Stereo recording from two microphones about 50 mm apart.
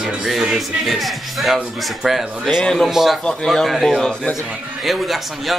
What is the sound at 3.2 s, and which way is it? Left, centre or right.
Speech, centre.